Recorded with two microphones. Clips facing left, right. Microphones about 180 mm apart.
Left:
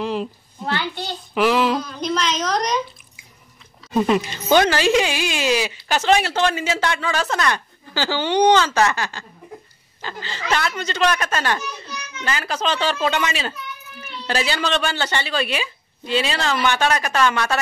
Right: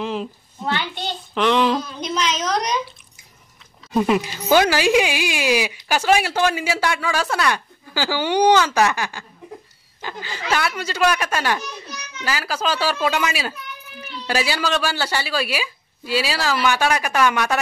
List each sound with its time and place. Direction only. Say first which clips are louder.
0.0 s speech: left 2 dB; centre (ahead or behind)
0.7 s a child's voice: even; 20° right (ahead or behind)
1.3 s speech: even; 5° left (ahead or behind)
3.9 s speech: even; 5° right (ahead or behind)